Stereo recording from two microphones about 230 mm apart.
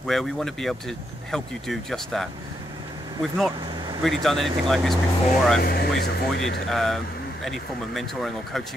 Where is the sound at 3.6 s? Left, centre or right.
Centre.